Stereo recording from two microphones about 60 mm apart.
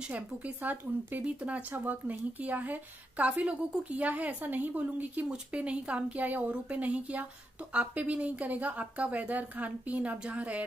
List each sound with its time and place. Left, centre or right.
0.0 s speech: right